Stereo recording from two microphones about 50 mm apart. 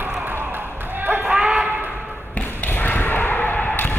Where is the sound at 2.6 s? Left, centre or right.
Left.